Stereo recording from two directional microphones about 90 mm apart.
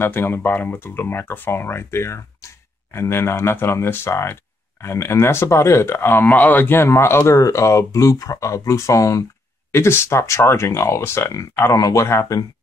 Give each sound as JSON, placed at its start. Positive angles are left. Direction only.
{"t": 0.0, "sound": "speech", "side_deg": 25}